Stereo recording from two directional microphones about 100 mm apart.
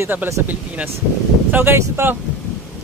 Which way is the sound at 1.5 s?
20° right (ahead or behind).